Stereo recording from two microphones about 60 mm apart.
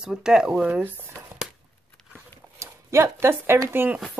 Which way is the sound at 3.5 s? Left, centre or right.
Right.